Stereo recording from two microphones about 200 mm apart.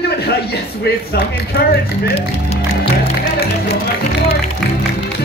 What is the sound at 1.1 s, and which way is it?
Speech, 55° left (ahead or behind).